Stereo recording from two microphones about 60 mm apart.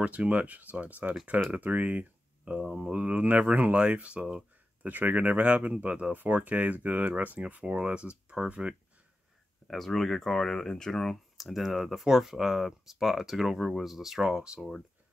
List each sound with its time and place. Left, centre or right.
0.0 s speech: right
2.6 s speech: centre
2.9 s speech: right
4.8 s speech: right
9.7 s speech: centre